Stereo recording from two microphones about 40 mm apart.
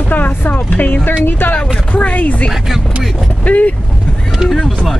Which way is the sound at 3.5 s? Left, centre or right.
Left.